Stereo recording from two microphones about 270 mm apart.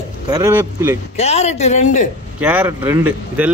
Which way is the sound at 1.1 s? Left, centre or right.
Left.